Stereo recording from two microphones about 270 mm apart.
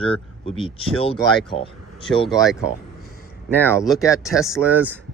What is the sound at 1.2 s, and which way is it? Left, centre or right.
Speech, centre.